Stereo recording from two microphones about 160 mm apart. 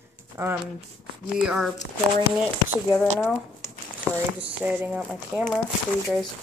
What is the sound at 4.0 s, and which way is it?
Speech, 10° right (ahead or behind).